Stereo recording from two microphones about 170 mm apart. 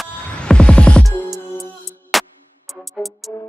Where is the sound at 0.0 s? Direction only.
5° left (ahead or behind).